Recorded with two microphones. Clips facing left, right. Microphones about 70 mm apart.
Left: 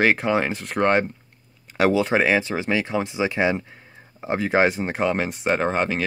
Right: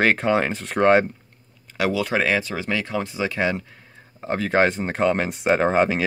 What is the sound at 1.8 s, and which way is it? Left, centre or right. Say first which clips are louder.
Speech: left 3 dB; left.